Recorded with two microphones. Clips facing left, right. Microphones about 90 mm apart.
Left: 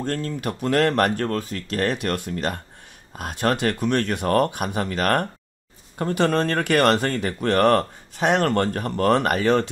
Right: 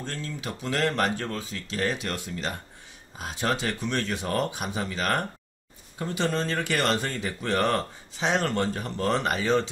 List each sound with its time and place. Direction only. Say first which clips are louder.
0.0 s speech: left 8 dB; 55° left (ahead or behind)